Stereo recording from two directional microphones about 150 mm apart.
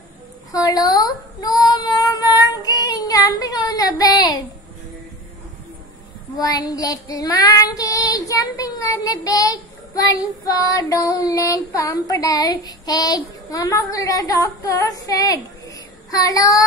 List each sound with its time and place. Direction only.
0.5 s female singing: 25° left (ahead or behind)
6.3 s child singing: 25° left (ahead or behind)